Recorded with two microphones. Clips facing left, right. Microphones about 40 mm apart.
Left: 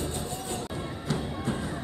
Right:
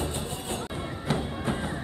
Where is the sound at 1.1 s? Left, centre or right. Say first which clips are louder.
Right 2 dB; right.